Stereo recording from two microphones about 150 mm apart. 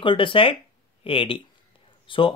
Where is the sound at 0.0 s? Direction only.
35° left (ahead or behind).